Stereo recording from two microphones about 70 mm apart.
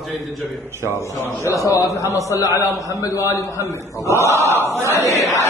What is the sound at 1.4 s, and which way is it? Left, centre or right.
A man's voice, left.